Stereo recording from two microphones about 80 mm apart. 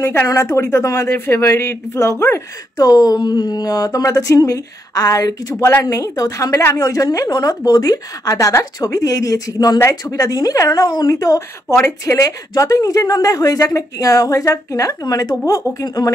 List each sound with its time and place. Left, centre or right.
0.0 s speech: left
2.8 s a woman's voice: left